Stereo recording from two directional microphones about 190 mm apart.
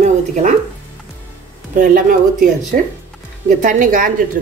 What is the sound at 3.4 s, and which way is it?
Speech, 40° right (ahead or behind).